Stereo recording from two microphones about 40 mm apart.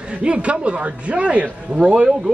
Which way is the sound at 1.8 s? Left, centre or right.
Right.